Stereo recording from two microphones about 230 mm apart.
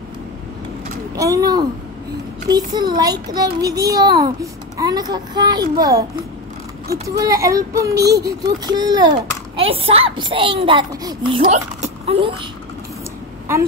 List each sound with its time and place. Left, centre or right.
1.1 s a child's voice: centre
7.2 s a child's voice: centre
11.4 s speech: right